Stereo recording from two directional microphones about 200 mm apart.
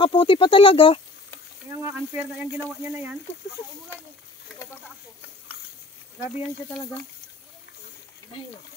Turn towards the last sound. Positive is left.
turn(degrees=5)  # may be behind; listen again after turning